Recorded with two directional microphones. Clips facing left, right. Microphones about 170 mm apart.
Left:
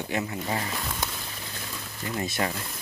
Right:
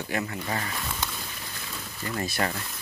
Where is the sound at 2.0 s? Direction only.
20° left (ahead or behind).